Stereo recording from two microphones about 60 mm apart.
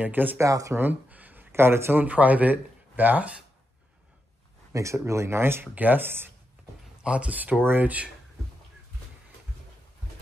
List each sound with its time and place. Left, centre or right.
0.0 s speech: right
0.4 s speech: right
0.7 s a sound: right
1.5 s speech: right
2.0 s speech: right
4.7 s speech: right
7.0 s speech: centre